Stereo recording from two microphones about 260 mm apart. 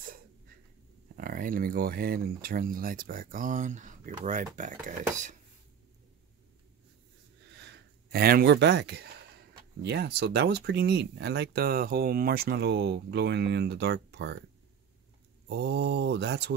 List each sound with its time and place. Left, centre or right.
1.1 s speech: right
7.5 s a sound: right
9.8 s speech: right
15.4 s speech: right